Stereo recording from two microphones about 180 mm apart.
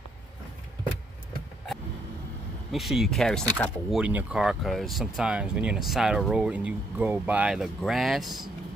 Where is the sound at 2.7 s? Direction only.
Centre (ahead or behind).